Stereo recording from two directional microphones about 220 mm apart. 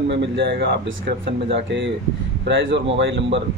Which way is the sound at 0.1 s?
50° right (ahead or behind).